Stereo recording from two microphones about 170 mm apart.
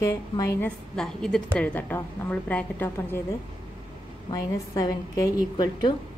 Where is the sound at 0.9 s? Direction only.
5° left (ahead or behind).